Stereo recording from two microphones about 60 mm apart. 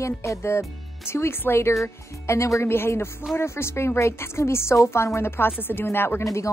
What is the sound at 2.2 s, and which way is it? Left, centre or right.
Speech, left.